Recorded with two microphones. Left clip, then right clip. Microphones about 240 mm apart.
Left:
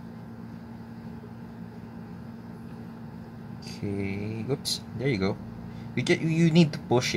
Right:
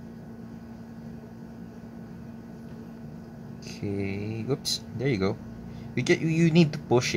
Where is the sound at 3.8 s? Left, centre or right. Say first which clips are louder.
Right 1 dB; centre.